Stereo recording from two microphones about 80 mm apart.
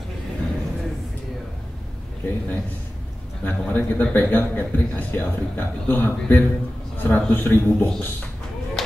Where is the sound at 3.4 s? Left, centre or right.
Left.